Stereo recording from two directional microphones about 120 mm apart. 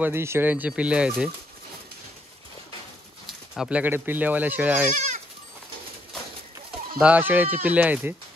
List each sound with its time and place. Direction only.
0.0 s speech: 20° right (ahead or behind)
3.3 s a sound: 5° right (ahead or behind)
3.8 s speech: 15° right (ahead or behind)
4.9 s goat: 90° right
7.0 s speech: 15° right (ahead or behind)